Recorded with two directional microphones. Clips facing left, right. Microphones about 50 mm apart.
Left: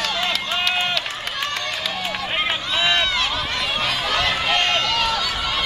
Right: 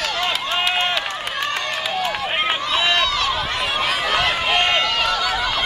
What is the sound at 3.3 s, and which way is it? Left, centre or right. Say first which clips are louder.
Run: right 2 dB; centre.